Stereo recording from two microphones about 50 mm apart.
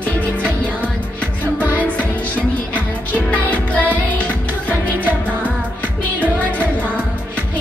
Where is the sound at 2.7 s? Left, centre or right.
Left.